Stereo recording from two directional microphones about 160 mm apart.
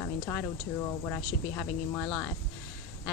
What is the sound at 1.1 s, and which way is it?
Speech, 15° left (ahead or behind).